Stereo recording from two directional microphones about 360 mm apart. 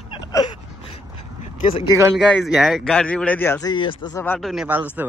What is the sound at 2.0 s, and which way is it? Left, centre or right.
Speech, centre.